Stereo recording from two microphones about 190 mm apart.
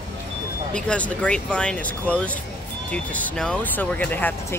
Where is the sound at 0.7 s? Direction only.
5° left (ahead or behind).